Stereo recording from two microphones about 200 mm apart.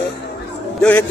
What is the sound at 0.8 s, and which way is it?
Speech, 5° left (ahead or behind).